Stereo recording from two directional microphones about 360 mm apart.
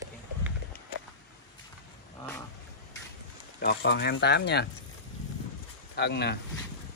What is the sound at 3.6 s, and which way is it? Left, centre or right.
Speech, left.